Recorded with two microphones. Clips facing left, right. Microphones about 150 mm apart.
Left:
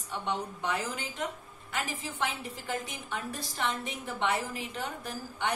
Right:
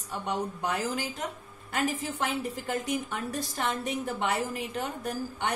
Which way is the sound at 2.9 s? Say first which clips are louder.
Right 6 dB; 45° right (ahead or behind).